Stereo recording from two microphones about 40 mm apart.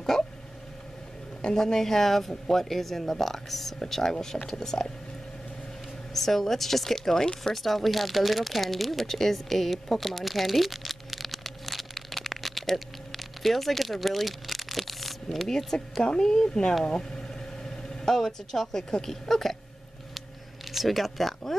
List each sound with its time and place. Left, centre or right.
0.1 s speech: centre
1.4 s speech: centre
6.1 s speech: centre
7.5 s a sound: centre
15.4 s speech: centre
20.7 s speech: centre